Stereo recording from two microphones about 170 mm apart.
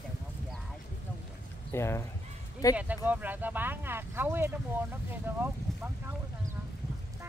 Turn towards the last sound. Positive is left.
turn(degrees=-15)  # may be behind; listen again after turning